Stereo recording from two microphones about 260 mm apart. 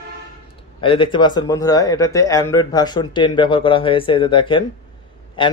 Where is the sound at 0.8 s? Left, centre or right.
Centre.